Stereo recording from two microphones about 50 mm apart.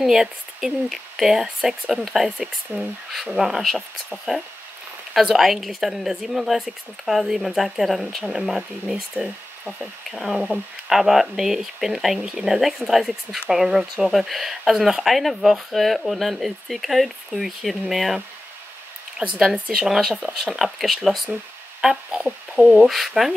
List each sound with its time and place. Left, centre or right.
0.0 s speech: centre
9.1 s speech: right
9.8 s speech: centre
19.1 s speech: centre
22.2 s speech: centre